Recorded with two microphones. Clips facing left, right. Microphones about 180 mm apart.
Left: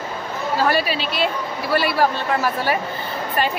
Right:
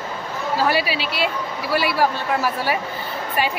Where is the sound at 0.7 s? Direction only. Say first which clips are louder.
Left 1 dB; 10° right (ahead or behind).